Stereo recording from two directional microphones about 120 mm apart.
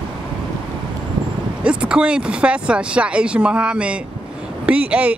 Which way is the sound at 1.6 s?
10° right (ahead or behind).